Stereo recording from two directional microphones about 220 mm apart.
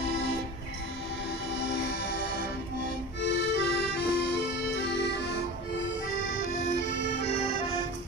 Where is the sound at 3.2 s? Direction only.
55° left (ahead or behind).